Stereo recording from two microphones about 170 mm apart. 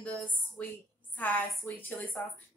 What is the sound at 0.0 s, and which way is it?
A woman's voice, 5° left (ahead or behind).